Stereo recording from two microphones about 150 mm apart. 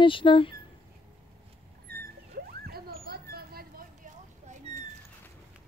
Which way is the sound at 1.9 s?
90° right.